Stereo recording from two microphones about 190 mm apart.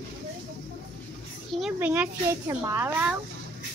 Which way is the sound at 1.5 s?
5° right (ahead or behind).